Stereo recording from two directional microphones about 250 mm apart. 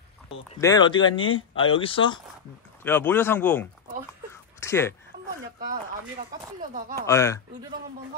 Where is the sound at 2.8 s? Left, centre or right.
Centre.